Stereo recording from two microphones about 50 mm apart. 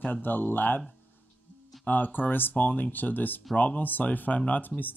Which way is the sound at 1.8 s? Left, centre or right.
Left.